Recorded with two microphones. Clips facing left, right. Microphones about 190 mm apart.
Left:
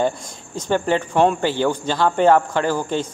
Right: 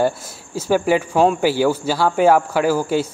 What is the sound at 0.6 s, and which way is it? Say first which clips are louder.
Speech: right 3 dB; 5° right (ahead or behind).